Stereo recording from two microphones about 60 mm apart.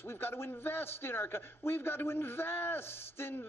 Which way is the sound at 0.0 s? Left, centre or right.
Left.